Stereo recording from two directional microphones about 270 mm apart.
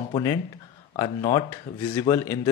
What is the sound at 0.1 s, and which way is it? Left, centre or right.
Speech, centre.